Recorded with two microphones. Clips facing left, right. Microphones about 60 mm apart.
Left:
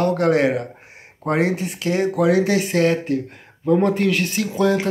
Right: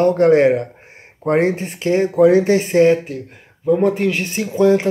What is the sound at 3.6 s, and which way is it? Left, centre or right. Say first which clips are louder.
Speech: right 2 dB; centre.